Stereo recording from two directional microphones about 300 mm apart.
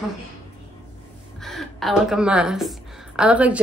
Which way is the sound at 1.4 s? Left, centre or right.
Centre.